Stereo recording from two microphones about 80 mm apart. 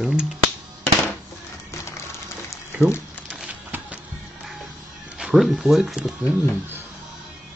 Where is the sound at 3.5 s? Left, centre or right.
Right.